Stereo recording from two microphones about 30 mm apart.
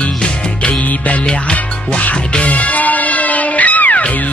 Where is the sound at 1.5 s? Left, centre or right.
Left.